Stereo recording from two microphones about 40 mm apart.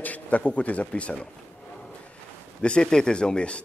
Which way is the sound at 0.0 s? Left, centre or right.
Left.